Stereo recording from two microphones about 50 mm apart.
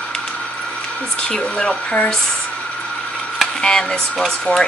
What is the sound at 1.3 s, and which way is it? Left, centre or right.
Speech, centre.